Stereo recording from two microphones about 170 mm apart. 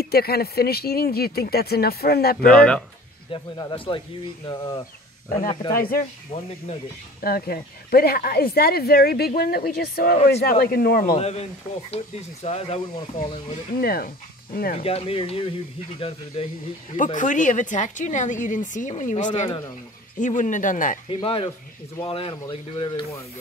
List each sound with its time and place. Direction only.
0.0 s speech: 65° left (ahead or behind)
2.4 s speech: 5° left (ahead or behind)
3.3 s speech: 30° left (ahead or behind)
5.8 s speech: 60° left (ahead or behind)
6.3 s speech: 35° left (ahead or behind)
7.2 s speech: 60° left (ahead or behind)
11.1 s speech: 40° left (ahead or behind)
13.7 s speech: 60° left (ahead or behind)
14.8 s speech: 35° left (ahead or behind)
16.9 s speech: 50° left (ahead or behind)
21.1 s speech: 35° left (ahead or behind)